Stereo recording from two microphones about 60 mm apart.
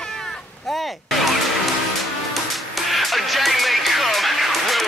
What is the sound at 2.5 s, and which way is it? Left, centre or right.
Music, centre.